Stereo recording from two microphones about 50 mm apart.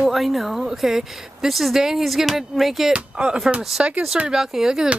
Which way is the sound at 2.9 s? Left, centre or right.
Right.